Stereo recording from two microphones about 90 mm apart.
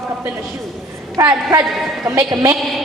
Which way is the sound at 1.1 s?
40° right (ahead or behind).